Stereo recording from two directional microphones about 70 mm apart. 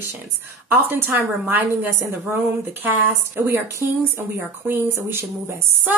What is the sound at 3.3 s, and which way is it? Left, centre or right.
Speech, right.